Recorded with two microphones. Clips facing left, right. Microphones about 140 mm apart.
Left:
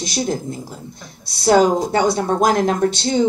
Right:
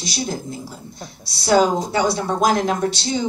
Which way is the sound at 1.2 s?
50° left (ahead or behind).